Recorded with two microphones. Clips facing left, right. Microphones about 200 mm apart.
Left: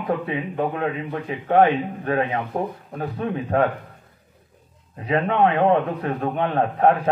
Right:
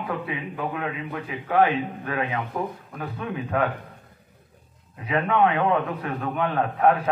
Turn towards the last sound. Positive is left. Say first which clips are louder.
# left 2 dB
turn(degrees=35)  # may be behind; listen again after turning